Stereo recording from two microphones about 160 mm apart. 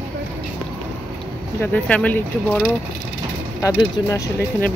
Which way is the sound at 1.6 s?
10° left (ahead or behind).